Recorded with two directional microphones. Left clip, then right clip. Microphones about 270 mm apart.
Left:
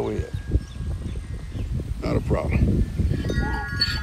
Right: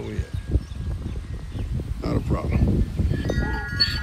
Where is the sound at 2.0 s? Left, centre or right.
Centre.